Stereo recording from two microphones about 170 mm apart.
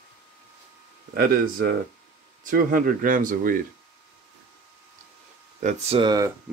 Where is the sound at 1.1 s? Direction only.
60° right (ahead or behind).